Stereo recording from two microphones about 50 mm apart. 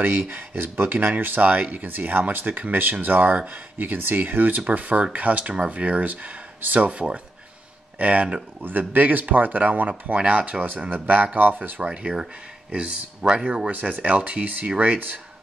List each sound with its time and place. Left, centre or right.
0.0 s speech: right
0.9 s speech: right
11.8 s speech: centre; by 15.1 s right